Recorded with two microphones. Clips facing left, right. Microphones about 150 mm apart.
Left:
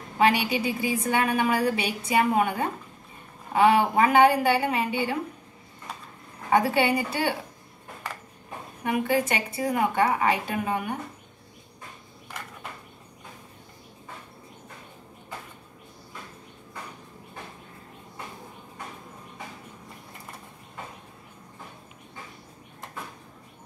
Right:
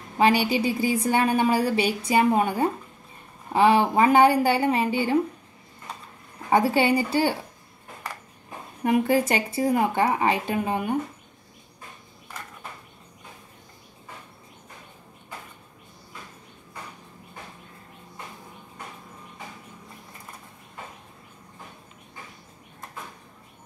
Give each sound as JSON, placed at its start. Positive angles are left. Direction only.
{"t": 0.2, "sound": "a woman's voice", "side_deg": -30}
{"t": 6.5, "sound": "speech", "side_deg": -30}
{"t": 8.8, "sound": "speech", "side_deg": -30}